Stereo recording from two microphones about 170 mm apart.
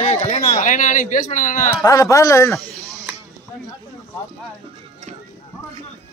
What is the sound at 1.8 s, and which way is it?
Speech, 20° left (ahead or behind).